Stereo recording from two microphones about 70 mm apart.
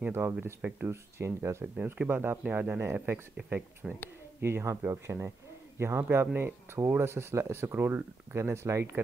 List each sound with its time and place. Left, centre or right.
0.1 s speech: right
0.6 s speech: centre
0.8 s speech: right
2.0 s speech: right
2.8 s speech: right
3.8 s speech: centre
4.4 s a man's voice: right
7.7 s speech: right